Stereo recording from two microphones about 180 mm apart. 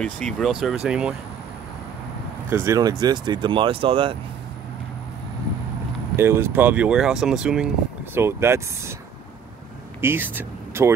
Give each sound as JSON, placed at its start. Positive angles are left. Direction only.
{"t": 0.0, "sound": "speech", "side_deg": 5}
{"t": 2.5, "sound": "speech", "side_deg": -15}
{"t": 6.1, "sound": "speech", "side_deg": -15}
{"t": 10.0, "sound": "speech", "side_deg": -10}